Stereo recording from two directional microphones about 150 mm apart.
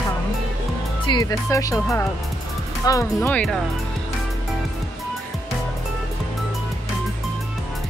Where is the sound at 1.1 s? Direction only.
25° left (ahead or behind).